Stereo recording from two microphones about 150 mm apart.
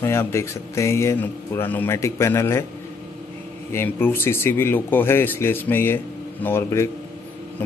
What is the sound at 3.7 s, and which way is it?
Speech, 15° left (ahead or behind).